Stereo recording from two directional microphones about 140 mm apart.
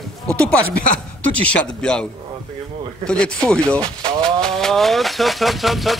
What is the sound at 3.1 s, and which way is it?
Speech, 5° left (ahead or behind).